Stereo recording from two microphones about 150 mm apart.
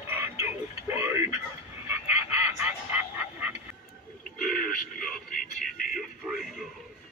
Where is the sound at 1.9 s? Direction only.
15° right (ahead or behind).